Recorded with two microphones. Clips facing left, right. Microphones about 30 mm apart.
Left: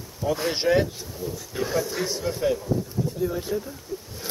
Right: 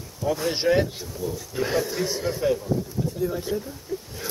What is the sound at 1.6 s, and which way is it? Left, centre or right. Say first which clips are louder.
Speech: right 1 dB; right.